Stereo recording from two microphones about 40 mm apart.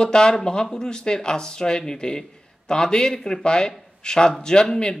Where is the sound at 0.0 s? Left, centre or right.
Centre.